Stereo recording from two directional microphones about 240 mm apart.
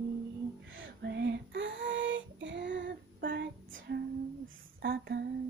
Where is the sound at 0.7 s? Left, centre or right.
Right.